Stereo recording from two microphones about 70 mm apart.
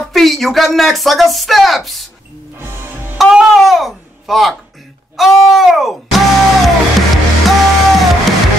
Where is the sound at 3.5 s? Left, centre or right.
Centre.